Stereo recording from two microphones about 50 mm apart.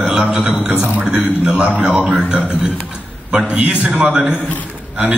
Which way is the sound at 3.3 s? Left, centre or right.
Right.